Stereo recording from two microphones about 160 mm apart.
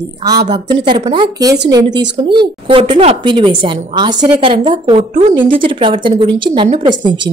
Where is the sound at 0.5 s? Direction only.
30° right (ahead or behind).